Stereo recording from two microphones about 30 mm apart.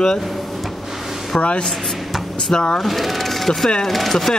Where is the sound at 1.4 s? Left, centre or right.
Left.